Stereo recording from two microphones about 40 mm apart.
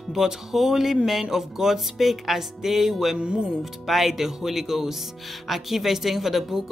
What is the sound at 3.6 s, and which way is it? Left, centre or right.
Speech, centre.